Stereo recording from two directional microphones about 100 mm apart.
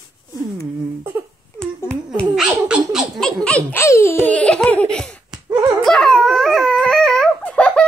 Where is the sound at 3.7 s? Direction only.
30° left (ahead or behind).